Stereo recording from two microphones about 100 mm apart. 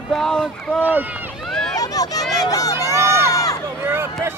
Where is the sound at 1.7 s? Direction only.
40° left (ahead or behind).